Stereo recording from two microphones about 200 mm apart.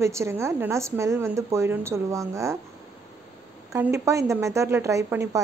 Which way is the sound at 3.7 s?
15° right (ahead or behind).